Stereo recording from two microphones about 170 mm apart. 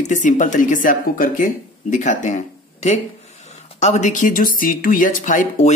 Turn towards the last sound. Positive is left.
turn(degrees=45)  # may be behind; listen again after turning